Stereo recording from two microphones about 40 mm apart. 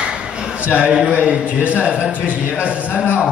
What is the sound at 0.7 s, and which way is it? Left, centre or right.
A man's voice, right.